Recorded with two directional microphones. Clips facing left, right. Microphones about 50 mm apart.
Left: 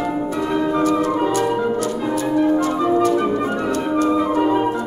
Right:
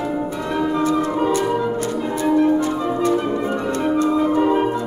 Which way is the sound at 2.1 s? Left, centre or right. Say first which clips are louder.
Right 2 dB; right.